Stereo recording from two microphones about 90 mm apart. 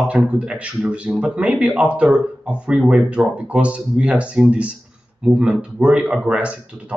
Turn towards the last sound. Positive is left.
turn(degrees=-15)  # may be behind; listen again after turning